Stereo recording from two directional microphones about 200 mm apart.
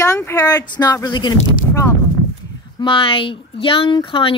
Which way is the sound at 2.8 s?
25° left (ahead or behind).